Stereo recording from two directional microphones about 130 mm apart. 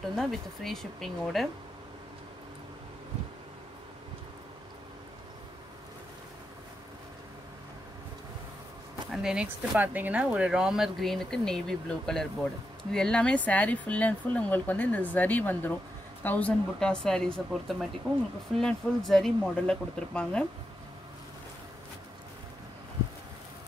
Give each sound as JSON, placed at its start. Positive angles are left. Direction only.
{"t": 0.1, "sound": "speech", "side_deg": 5}
{"t": 9.1, "sound": "speech", "side_deg": -5}